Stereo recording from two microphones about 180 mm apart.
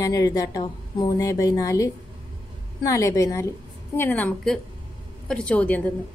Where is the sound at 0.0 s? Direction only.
20° left (ahead or behind).